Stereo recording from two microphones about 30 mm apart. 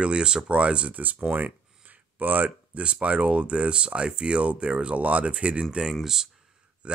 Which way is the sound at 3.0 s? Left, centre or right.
Right.